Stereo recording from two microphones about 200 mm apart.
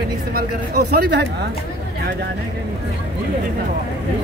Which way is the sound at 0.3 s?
50° right (ahead or behind).